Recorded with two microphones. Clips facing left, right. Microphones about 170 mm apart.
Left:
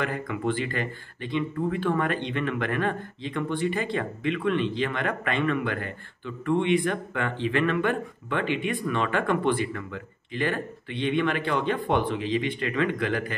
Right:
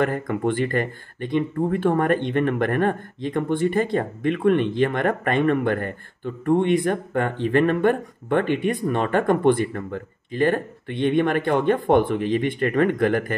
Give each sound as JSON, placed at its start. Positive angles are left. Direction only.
{"t": 0.0, "sound": "speech", "side_deg": -45}